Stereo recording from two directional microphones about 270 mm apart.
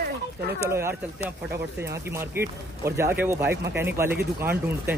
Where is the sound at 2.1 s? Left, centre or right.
Centre.